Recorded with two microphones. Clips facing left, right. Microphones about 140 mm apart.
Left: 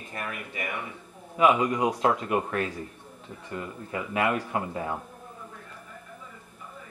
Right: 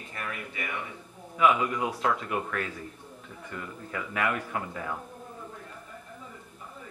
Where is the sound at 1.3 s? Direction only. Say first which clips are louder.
Left 2 dB; 30° left (ahead or behind).